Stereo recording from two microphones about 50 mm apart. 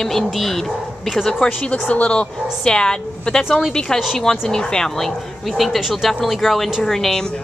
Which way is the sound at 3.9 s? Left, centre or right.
Centre.